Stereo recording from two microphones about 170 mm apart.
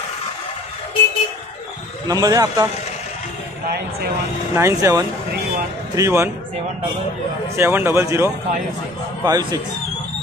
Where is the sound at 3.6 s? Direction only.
65° right (ahead or behind).